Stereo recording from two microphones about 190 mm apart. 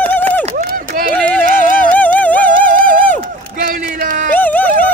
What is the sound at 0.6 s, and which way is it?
Run, 50° right (ahead or behind).